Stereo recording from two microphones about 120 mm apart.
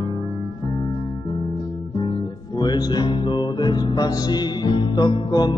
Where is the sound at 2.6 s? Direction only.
35° left (ahead or behind).